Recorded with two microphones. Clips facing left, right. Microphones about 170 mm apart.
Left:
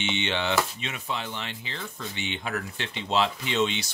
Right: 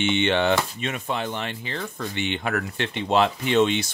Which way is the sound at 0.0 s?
55° right (ahead or behind).